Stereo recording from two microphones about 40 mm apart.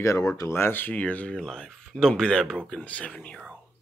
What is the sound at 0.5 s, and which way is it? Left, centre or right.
Speech, left.